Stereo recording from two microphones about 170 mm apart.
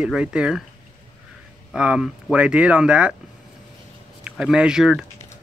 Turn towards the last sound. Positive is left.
turn(degrees=-5)  # may be behind; listen again after turning